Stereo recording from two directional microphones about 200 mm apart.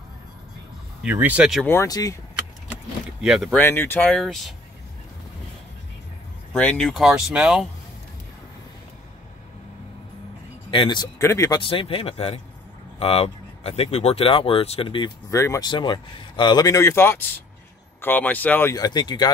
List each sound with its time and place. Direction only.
1.0 s speech: 10° right (ahead or behind)
1.7 s speech: 15° left (ahead or behind)
3.2 s speech: centre (ahead or behind)
3.5 s speech: 10° left (ahead or behind)
6.5 s speech: 5° left (ahead or behind)
10.7 s speech: 25° left (ahead or behind)
11.6 s speech: 25° left (ahead or behind)